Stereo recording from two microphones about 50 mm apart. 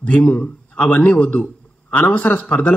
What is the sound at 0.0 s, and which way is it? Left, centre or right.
A man's voice, left.